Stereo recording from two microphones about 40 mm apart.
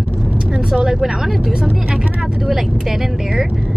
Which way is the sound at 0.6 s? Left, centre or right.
Centre.